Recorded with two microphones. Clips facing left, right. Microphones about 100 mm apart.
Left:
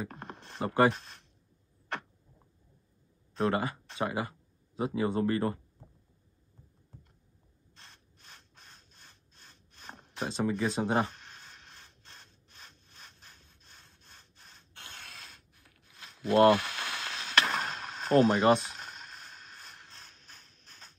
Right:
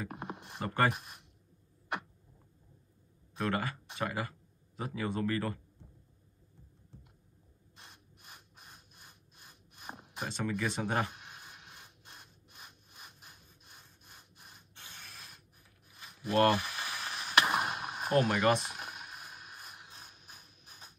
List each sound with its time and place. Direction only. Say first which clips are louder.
0.1 s a sound: right 2 dB; 10° right (ahead or behind)
0.6 s speech: left 5 dB; 25° left (ahead or behind)
0.9 s speech: even; 10° right (ahead or behind)
3.3 s speech: left 4 dB; 20° left (ahead or behind)
7.7 s rub: right 1 dB; 10° right (ahead or behind)
10.2 s speech: left 4 dB; 25° left (ahead or behind)
11.1 s rub: even; 10° right (ahead or behind)
14.0 s wood: right 1 dB; 10° right (ahead or behind)
14.7 s mechanisms: left 5 dB; 65° left (ahead or behind); by 17.3 s 85° left
17.3 s a sound: right 1 dB; 10° right (ahead or behind)
18.3 s speech: left 4 dB; 30° left (ahead or behind)
18.6 s mechanisms: right 1 dB; 10° right (ahead or behind)